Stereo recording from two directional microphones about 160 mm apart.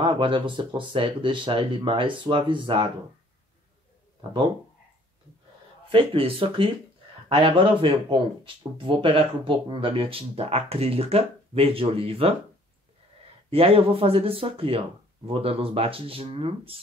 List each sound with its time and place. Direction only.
0.0 s speech: 30° right (ahead or behind)
5.9 s speech: 35° right (ahead or behind)
13.5 s speech: 35° right (ahead or behind)